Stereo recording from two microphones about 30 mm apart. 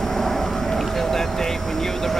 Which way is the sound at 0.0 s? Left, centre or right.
Centre.